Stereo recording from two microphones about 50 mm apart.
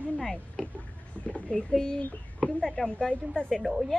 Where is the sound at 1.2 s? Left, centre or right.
Left.